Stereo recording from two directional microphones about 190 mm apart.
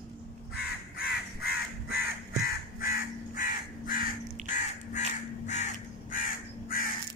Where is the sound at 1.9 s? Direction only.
55° left (ahead or behind).